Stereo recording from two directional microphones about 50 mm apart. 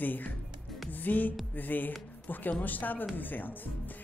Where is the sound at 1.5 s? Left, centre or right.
Left.